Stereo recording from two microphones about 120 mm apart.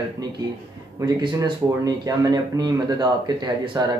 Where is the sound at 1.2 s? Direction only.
35° right (ahead or behind).